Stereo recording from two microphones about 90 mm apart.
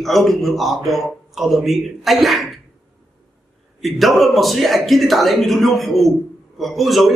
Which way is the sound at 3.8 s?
Centre (ahead or behind).